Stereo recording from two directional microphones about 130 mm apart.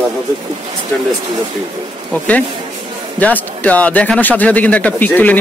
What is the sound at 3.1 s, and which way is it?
Speech, 10° left (ahead or behind).